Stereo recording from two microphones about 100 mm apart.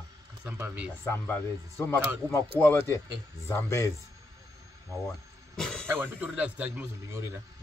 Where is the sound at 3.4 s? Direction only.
25° left (ahead or behind).